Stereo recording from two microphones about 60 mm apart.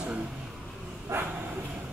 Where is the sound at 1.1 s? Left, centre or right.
Right.